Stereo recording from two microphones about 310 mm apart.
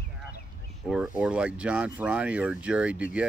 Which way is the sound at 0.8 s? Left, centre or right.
Centre.